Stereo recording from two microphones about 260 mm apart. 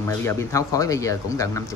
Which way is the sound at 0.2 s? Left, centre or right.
Centre.